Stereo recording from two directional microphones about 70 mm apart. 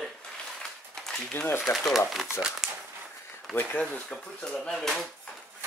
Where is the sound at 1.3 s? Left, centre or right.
Left.